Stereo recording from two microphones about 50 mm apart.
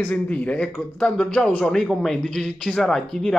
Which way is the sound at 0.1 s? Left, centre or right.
Left.